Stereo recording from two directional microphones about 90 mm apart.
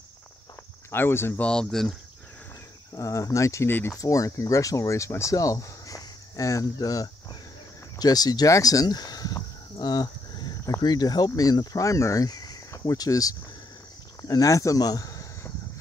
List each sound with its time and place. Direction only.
0.9 s speech: 25° left (ahead or behind)
1.4 s speech: 5° left (ahead or behind)
2.9 s speech: 35° left (ahead or behind)
8.0 s a sound: 45° left (ahead or behind)
10.8 s speech: 50° left (ahead or behind)